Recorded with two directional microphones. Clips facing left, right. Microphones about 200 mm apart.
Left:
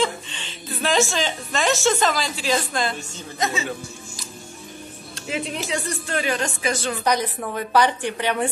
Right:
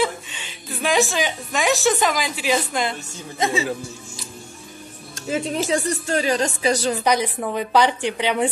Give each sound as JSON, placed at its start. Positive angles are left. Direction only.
{"t": 0.0, "sound": "a sound", "side_deg": -10}
{"t": 0.8, "sound": "speech", "side_deg": -15}
{"t": 5.1, "sound": "a woman's voice", "side_deg": -45}
{"t": 7.1, "sound": "speech", "side_deg": -10}